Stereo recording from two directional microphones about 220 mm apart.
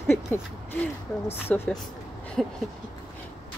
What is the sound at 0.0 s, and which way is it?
Owl, 10° left (ahead or behind).